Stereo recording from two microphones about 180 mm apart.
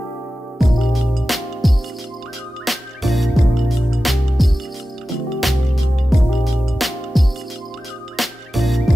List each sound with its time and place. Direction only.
0.6 s music: centre (ahead or behind)